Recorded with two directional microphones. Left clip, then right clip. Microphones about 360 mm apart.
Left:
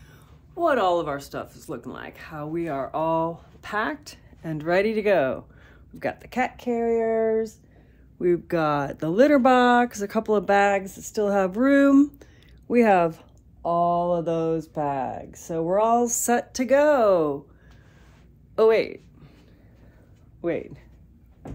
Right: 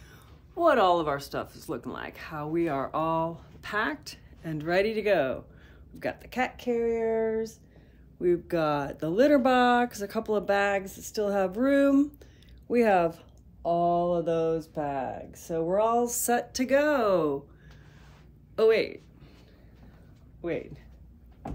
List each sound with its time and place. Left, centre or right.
0.1 s speech: centre
18.6 s a sound: centre
20.4 s speech: centre